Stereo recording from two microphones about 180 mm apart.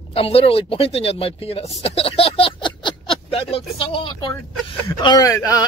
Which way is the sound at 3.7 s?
30° left (ahead or behind).